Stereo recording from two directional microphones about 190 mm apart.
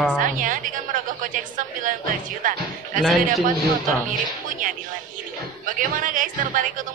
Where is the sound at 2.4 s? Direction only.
45° right (ahead or behind).